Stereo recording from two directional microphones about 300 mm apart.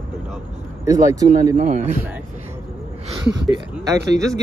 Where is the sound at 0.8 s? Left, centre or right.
Centre.